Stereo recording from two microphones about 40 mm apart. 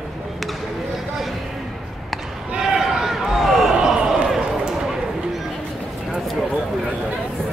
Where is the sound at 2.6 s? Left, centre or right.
Centre.